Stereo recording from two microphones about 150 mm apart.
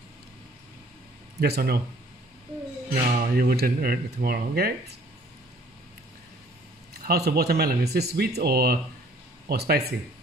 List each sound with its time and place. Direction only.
1.4 s speech: 90° right
2.9 s speech: 70° right (ahead or behind); by 4.9 s 90° right
7.1 s speech: 90° right